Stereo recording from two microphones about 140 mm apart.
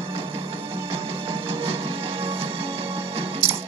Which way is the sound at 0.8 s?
45° right (ahead or behind).